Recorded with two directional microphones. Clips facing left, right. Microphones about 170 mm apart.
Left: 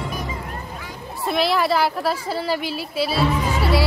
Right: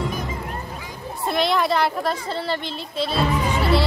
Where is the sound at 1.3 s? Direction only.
5° left (ahead or behind).